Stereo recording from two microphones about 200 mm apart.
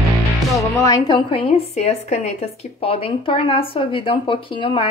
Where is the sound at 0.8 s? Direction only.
20° left (ahead or behind).